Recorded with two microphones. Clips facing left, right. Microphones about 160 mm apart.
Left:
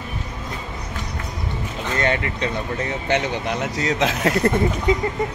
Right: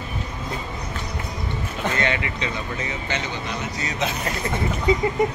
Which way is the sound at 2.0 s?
45° left (ahead or behind).